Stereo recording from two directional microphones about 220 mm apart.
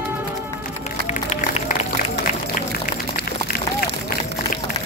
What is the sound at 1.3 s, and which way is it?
Music, 30° left (ahead or behind).